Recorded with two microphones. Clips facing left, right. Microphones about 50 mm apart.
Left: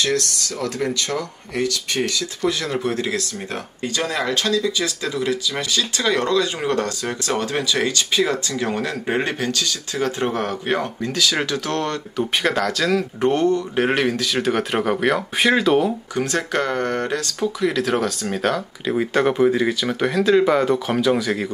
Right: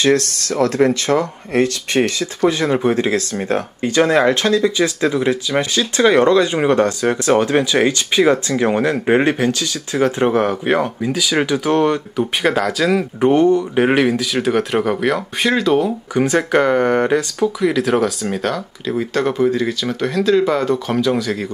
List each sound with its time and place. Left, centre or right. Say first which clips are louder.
0.0 s speech: right 6 dB; right; by 15.9 s centre
16.2 s speech: right 8 dB; centre
17.6 s speech: right 4 dB; centre